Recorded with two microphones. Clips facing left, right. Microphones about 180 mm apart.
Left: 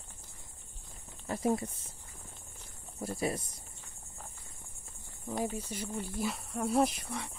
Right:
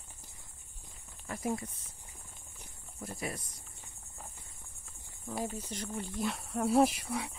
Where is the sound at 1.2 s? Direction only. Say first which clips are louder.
Left 5 dB; 30° left (ahead or behind).